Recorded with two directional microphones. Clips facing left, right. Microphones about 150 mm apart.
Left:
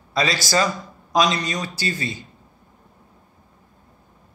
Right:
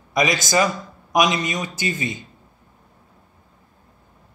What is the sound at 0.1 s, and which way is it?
A man's voice, 20° right (ahead or behind).